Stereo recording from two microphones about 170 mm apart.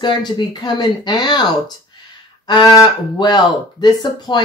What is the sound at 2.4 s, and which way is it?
Speech, 25° left (ahead or behind).